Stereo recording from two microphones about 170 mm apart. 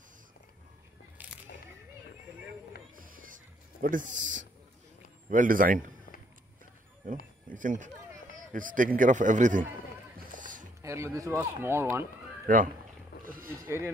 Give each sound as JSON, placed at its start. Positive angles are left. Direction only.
{"t": 3.8, "sound": "a man's voice", "side_deg": -50}
{"t": 7.0, "sound": "a man's voice", "side_deg": -50}
{"t": 10.1, "sound": "music", "side_deg": -50}
{"t": 10.8, "sound": "speech", "side_deg": -15}
{"t": 12.5, "sound": "speech", "side_deg": -55}
{"t": 13.5, "sound": "speech", "side_deg": -15}